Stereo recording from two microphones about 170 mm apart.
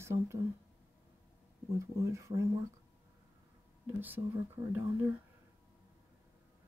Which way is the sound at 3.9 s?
10° right (ahead or behind).